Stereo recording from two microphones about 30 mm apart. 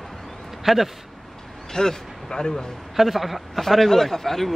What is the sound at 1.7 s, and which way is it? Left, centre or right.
Speech, centre.